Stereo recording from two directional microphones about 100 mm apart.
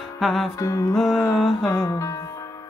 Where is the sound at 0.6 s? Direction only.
35° left (ahead or behind).